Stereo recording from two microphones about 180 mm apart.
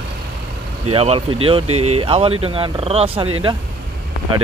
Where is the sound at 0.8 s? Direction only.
35° right (ahead or behind).